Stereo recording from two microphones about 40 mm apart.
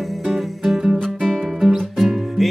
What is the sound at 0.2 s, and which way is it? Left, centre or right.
Music, centre.